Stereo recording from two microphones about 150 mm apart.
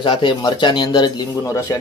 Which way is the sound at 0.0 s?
30° left (ahead or behind).